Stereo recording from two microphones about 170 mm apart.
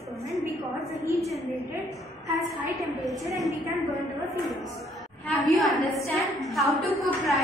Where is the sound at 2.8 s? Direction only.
Centre (ahead or behind).